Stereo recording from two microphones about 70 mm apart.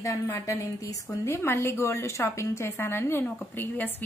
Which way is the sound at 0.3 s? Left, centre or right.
Left.